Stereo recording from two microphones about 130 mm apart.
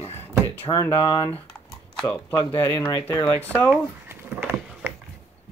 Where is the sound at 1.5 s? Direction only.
10° left (ahead or behind).